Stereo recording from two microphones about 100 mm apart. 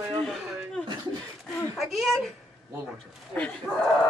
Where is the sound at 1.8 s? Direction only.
Centre (ahead or behind).